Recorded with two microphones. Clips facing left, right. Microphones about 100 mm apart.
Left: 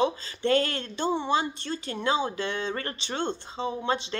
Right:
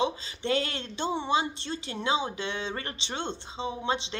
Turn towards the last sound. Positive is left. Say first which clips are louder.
# left 2 dB
turn(degrees=-20)  # may be behind; listen again after turning